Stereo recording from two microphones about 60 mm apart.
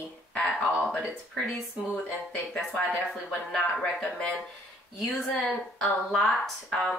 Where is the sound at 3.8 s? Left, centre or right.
Centre.